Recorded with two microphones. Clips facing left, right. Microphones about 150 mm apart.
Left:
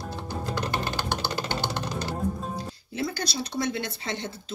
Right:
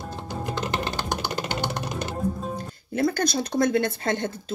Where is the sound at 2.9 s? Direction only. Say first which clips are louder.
Right 7 dB; 50° right (ahead or behind).